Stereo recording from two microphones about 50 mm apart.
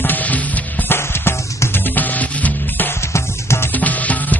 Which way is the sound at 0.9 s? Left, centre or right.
Left.